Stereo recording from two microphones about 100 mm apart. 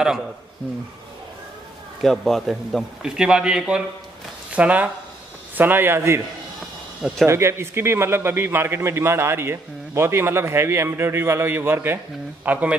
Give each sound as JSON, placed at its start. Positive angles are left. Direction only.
{"t": 2.0, "sound": "a man's voice", "side_deg": 0}
{"t": 7.2, "sound": "a man's voice", "side_deg": -25}